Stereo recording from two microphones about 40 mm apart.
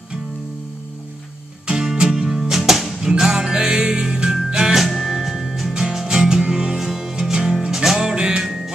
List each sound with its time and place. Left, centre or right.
1.7 s music: centre
3.1 s music: centre
4.7 s music: centre
8.5 s music: centre